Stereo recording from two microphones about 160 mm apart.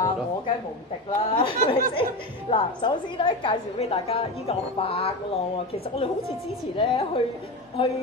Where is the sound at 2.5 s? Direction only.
35° left (ahead or behind).